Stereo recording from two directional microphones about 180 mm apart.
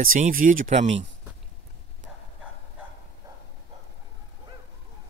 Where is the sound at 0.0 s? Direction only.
50° right (ahead or behind).